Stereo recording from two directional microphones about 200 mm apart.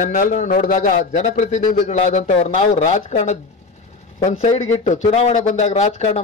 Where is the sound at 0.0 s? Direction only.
40° left (ahead or behind).